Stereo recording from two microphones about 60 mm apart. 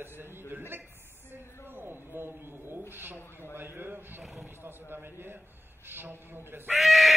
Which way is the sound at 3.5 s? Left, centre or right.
Right.